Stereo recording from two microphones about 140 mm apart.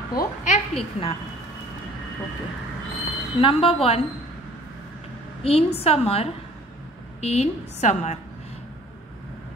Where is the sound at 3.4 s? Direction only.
40° left (ahead or behind).